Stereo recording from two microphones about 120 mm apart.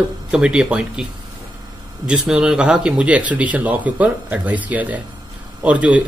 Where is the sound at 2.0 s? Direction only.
10° right (ahead or behind).